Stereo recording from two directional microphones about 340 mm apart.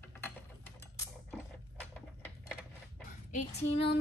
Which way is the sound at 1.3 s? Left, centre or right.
Centre.